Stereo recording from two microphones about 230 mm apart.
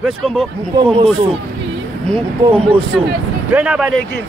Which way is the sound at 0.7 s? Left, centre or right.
Right.